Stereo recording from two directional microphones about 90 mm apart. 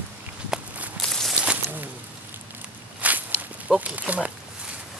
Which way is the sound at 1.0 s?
5° left (ahead or behind).